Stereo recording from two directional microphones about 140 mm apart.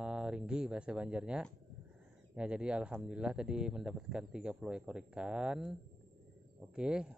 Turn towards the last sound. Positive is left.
turn(degrees=-5)  # may be behind; listen again after turning